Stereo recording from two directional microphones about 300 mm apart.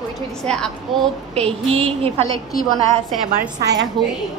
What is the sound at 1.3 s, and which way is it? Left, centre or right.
Speech, centre.